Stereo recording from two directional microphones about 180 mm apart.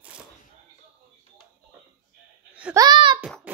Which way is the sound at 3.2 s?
Centre (ahead or behind).